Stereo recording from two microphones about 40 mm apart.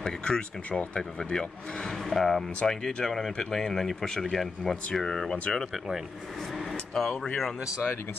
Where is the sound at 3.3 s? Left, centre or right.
Centre.